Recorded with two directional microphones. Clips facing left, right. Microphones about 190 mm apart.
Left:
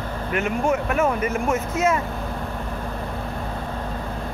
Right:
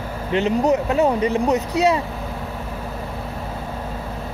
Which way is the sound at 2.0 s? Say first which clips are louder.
Even; 5° right (ahead or behind).